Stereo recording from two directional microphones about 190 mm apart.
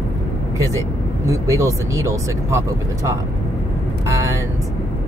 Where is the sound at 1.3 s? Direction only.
15° right (ahead or behind).